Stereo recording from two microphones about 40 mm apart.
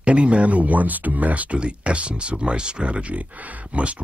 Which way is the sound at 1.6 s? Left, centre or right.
Right.